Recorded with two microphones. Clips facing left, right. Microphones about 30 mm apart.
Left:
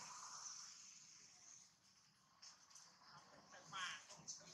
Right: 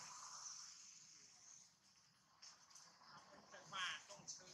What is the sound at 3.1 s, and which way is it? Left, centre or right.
Vehicle, centre.